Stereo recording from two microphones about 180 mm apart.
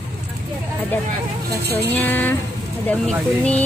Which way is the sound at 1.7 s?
10° left (ahead or behind).